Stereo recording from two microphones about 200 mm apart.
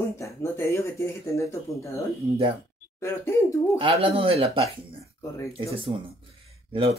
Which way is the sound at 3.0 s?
15° left (ahead or behind).